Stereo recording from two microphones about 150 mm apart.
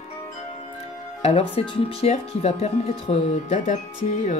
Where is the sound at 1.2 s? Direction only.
40° left (ahead or behind).